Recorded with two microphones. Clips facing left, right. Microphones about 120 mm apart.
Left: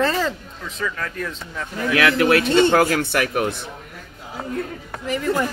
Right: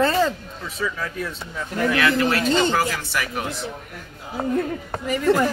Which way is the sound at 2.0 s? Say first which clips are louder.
Left 6 dB; 65° left (ahead or behind).